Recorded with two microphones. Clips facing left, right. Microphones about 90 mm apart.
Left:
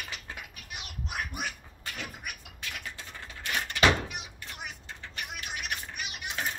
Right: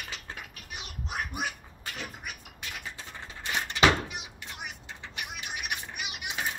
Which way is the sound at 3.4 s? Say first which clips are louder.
Right 1 dB; 20° right (ahead or behind).